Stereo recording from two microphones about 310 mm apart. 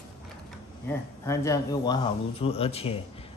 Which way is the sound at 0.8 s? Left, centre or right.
Centre.